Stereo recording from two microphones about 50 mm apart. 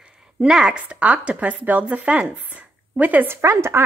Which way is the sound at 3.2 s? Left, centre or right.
Right.